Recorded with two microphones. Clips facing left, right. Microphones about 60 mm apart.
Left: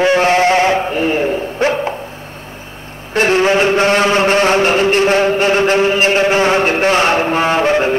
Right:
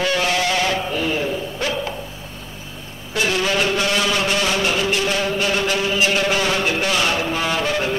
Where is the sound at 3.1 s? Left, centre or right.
Left.